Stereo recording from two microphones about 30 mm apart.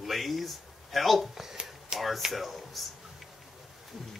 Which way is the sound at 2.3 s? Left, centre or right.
Centre.